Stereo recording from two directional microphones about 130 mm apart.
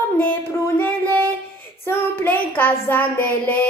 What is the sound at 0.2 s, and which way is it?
Music, 15° left (ahead or behind).